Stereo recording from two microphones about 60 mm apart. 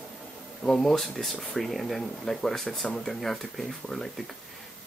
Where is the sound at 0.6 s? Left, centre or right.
Centre.